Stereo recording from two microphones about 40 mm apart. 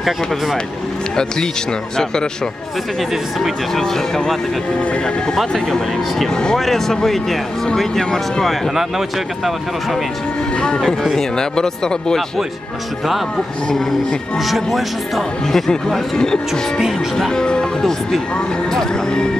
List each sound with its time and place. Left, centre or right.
3.7 s speech: centre
5.7 s speech: centre
6.3 s speech: centre
8.7 s speech: centre
10.5 s speech: left
14.4 s speech: centre